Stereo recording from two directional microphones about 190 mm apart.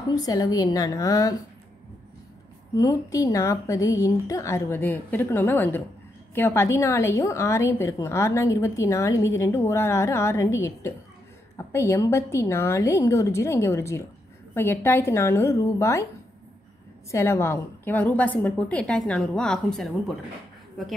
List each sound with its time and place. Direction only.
0.1 s a woman's voice: 20° left (ahead or behind)
2.7 s a woman's voice: 20° left (ahead or behind)
17.1 s a woman's voice: 15° left (ahead or behind)